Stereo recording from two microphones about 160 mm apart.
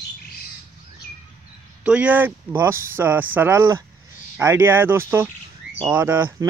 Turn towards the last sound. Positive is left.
turn(degrees=-15)  # may be behind; listen again after turning